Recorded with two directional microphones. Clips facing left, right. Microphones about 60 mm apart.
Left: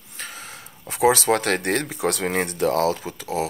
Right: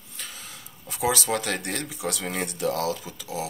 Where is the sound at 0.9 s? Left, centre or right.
Left.